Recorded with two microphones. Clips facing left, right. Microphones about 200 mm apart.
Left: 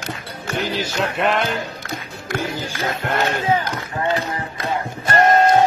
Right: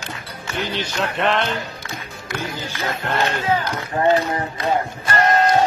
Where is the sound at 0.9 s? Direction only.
5° left (ahead or behind).